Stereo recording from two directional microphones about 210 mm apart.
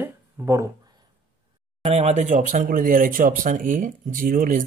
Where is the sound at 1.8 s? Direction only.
30° right (ahead or behind).